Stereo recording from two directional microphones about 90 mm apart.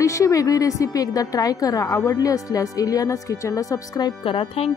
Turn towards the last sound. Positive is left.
turn(degrees=80)